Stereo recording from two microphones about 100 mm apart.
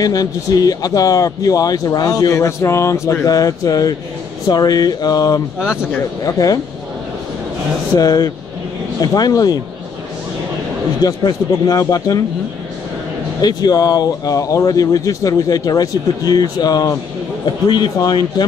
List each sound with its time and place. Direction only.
0.0 s a man's voice: 40° left (ahead or behind)
5.6 s speech: 10° right (ahead or behind)
6.2 s a man's voice: 35° left (ahead or behind)
8.0 s a man's voice: 35° left (ahead or behind)
11.0 s a man's voice: 40° left (ahead or behind)
13.4 s a man's voice: 45° left (ahead or behind)